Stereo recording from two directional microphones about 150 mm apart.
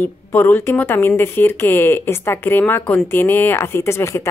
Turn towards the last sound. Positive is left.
turn(degrees=20)  # may be behind; listen again after turning